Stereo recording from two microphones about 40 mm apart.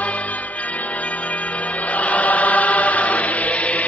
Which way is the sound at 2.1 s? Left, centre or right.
Left.